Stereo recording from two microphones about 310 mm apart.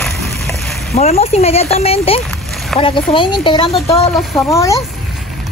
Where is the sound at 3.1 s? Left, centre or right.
Centre.